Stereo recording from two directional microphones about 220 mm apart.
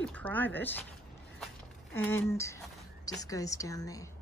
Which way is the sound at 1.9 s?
10° left (ahead or behind).